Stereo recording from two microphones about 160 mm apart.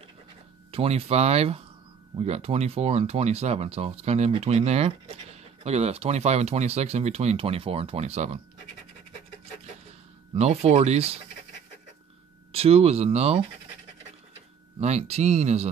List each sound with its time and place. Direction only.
0.7 s speech: 40° right (ahead or behind)
10.3 s speech: 40° right (ahead or behind)
12.5 s speech: 40° right (ahead or behind)
14.8 s speech: 40° right (ahead or behind)